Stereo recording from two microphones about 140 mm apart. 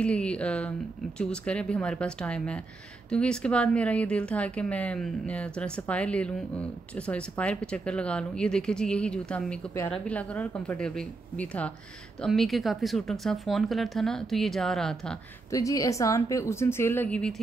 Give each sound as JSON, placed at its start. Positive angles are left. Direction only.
{"t": 0.0, "sound": "speech", "side_deg": 10}
{"t": 15.5, "sound": "a woman's voice", "side_deg": 25}